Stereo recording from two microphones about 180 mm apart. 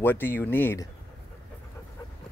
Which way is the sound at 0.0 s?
10° left (ahead or behind).